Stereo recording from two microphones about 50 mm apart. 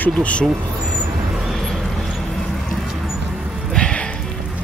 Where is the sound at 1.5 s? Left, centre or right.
Centre.